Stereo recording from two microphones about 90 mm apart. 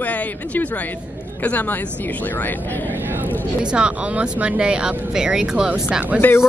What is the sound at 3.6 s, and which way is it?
Speech, 10° right (ahead or behind).